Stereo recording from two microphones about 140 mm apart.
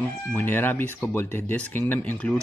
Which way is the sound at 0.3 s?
15° left (ahead or behind).